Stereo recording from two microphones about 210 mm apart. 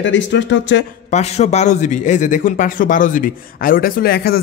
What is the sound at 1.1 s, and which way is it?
Speech, 30° left (ahead or behind).